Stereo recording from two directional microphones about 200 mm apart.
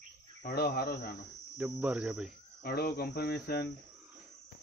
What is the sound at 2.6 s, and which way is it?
Cricket, 50° left (ahead or behind).